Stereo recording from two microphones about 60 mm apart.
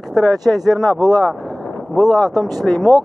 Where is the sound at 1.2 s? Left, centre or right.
Centre.